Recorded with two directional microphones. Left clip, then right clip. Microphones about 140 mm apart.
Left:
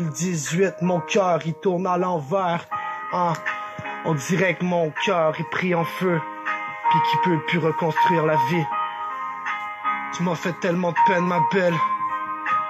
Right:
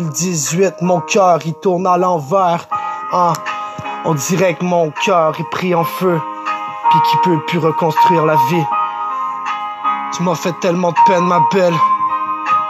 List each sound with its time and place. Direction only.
0.2 s music: 30° right (ahead or behind)
9.8 s music: 35° right (ahead or behind)